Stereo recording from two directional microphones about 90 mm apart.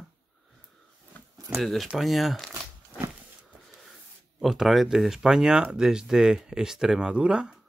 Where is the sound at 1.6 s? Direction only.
Centre (ahead or behind).